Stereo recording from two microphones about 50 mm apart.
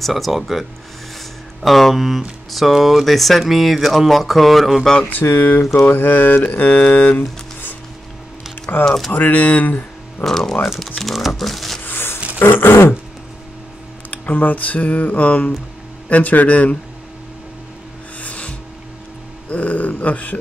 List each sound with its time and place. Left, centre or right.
0.0 s speech: centre
5.1 s speech: left
5.6 s mantra: left
5.9 s speech: left
8.8 s speech: centre
9.1 s speech: left
10.2 s speech: centre
11.8 s music: left
12.4 s grunt: left
14.1 s speech: left
18.2 s music: left
19.5 s speech: left